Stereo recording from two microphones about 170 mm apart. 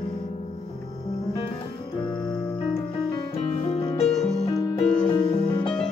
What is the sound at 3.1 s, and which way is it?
Music, 35° left (ahead or behind).